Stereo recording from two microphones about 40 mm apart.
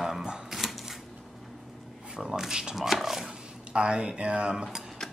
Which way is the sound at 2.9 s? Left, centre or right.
Centre.